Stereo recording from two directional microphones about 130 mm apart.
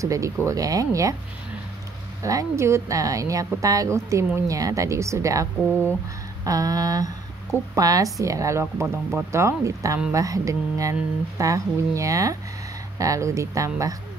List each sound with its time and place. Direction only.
0.0 s a woman's voice: 25° right (ahead or behind)
2.2 s a woman's voice: 25° right (ahead or behind)